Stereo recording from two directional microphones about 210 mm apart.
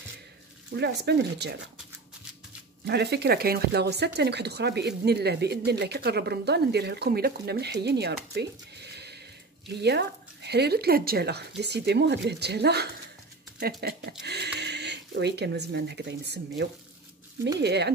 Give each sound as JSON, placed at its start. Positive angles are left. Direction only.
{"t": 0.7, "sound": "speech", "side_deg": -50}
{"t": 2.8, "sound": "speech", "side_deg": -50}